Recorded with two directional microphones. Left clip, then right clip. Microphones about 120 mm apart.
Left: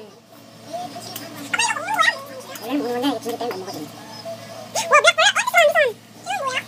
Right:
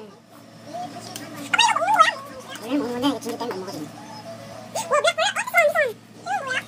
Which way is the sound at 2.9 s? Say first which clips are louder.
Left 3 dB; 35° right (ahead or behind).